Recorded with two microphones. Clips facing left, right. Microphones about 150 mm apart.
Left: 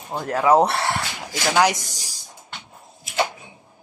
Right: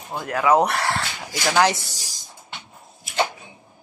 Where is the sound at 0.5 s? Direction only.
30° left (ahead or behind).